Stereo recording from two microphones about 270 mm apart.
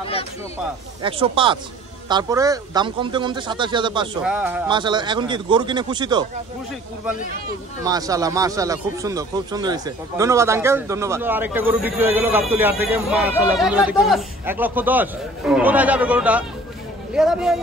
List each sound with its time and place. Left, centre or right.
0.0 s a sound: left
1.0 s speech: centre
4.2 s speech: centre
4.6 s speech: centre
7.8 s speech: centre